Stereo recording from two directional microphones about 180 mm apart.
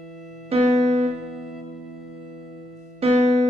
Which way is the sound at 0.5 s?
35° right (ahead or behind).